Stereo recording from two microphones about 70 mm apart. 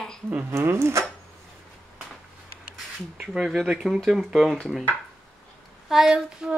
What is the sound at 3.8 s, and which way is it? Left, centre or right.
Child singing, centre.